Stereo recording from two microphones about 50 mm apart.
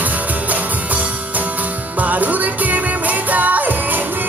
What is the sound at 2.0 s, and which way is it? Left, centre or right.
Music, right.